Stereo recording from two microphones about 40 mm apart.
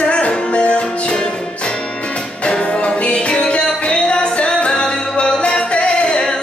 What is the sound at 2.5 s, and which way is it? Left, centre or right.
Music, left.